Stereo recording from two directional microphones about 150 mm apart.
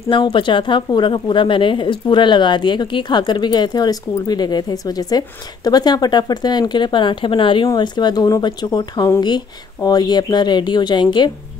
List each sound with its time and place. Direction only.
0.1 s a woman's voice: 35° left (ahead or behind)